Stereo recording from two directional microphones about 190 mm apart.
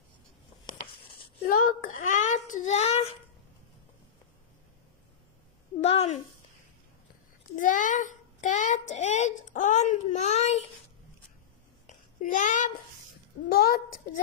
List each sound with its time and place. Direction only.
1.5 s a child's voice: 40° left (ahead or behind)
5.8 s speech: 35° left (ahead or behind)
7.5 s a child's voice: 45° left (ahead or behind)
12.2 s a child's voice: 40° left (ahead or behind)
13.5 s a woman's voice: 55° left (ahead or behind)